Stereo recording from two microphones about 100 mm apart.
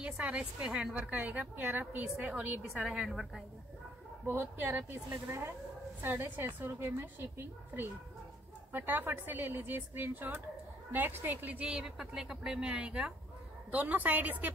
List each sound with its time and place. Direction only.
0.0 s a woman's voice: 15° right (ahead or behind)
4.3 s a woman's voice: 20° right (ahead or behind)